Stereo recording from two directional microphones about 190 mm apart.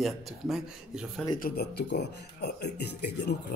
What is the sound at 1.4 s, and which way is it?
Speech, 55° left (ahead or behind).